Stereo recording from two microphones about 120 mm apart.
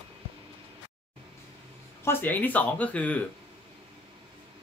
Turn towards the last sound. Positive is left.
turn(degrees=10)  # may be behind; listen again after turning